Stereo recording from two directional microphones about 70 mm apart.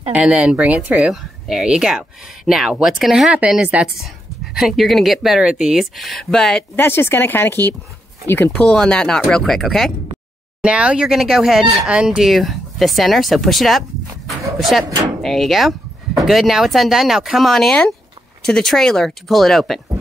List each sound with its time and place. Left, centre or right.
0.1 s a woman's voice: centre
1.1 s speech: centre
3.7 s a woman's voice: centre
4.6 s speech: centre
6.7 s speech: left
8.5 s speech: centre
10.6 s a woman's voice: centre
11.1 s speech: centre
11.9 s a woman's voice: centre
12.3 s speech: centre